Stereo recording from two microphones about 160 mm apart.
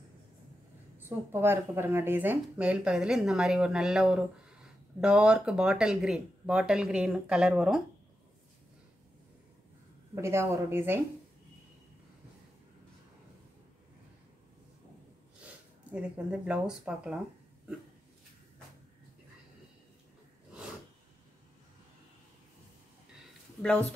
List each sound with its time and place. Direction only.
0.9 s speech: 15° right (ahead or behind)
10.1 s speech: 15° right (ahead or behind)
15.4 s speech: 5° right (ahead or behind)
23.6 s speech: 10° left (ahead or behind)